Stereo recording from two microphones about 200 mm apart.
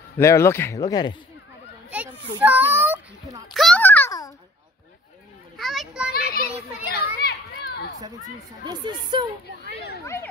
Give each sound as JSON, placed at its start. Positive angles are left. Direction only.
{"t": 0.2, "sound": "speech", "side_deg": 15}
{"t": 1.9, "sound": "a child's voice", "side_deg": -10}
{"t": 3.5, "sound": "a sound", "side_deg": 5}
{"t": 5.6, "sound": "children playing", "side_deg": 0}
{"t": 6.1, "sound": "a child's voice", "side_deg": 50}
{"t": 6.9, "sound": "children playing", "side_deg": 50}
{"t": 8.6, "sound": "speech", "side_deg": -20}